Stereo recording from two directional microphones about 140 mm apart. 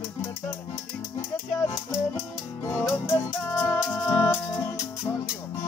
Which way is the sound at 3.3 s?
20° left (ahead or behind).